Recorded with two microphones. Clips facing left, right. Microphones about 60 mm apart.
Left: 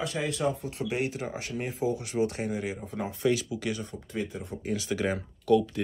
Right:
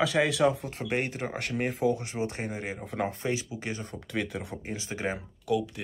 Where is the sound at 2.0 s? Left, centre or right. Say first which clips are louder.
Left 4 dB; right.